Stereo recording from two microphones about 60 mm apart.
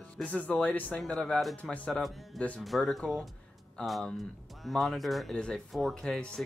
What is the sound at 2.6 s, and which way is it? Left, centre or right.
Speech, centre.